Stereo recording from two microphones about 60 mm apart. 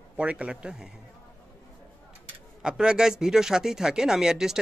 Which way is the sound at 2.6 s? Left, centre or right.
Centre.